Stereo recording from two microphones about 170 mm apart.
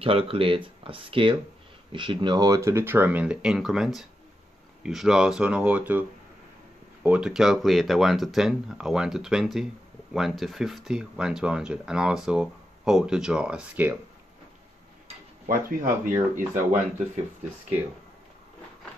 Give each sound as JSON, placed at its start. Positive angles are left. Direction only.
{"t": 0.0, "sound": "speech", "side_deg": -35}
{"t": 15.4, "sound": "speech", "side_deg": -55}